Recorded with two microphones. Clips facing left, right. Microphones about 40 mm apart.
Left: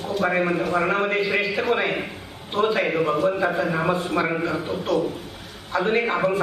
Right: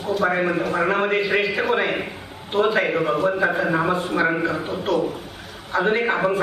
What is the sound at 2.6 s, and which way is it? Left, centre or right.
Speech, centre.